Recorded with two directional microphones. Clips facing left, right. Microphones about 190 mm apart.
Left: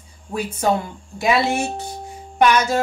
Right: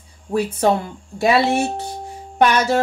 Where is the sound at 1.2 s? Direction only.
35° right (ahead or behind).